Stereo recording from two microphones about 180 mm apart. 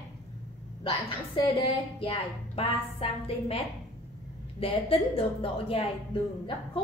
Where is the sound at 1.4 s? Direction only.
30° left (ahead or behind).